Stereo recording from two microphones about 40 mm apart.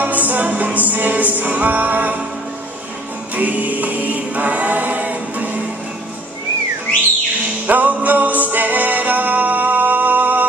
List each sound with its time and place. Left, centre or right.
0.0 s music: right
3.3 s music: right
7.6 s music: right